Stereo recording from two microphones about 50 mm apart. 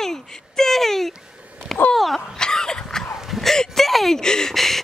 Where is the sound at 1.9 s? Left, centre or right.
Centre.